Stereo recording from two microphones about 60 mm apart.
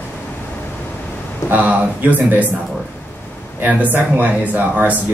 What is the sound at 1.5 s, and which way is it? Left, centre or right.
Speech, right.